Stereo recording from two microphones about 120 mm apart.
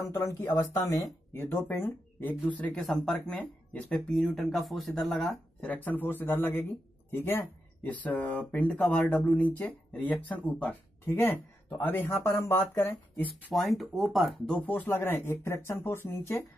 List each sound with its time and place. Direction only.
0.0 s speech: 20° left (ahead or behind)
1.4 s speech: 15° left (ahead or behind)
2.6 s speech: 5° left (ahead or behind)
5.7 s speech: 15° left (ahead or behind)
13.5 s speech: centre (ahead or behind); by 16.3 s 20° left (ahead or behind)